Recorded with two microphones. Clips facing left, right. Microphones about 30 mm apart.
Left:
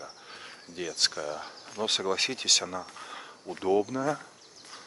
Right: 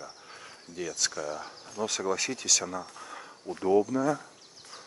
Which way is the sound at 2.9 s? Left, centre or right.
Left.